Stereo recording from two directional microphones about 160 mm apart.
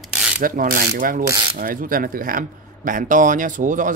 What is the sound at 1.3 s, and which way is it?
Rub, 25° right (ahead or behind).